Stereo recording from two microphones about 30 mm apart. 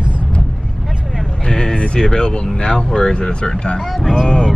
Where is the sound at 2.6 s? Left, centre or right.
Left.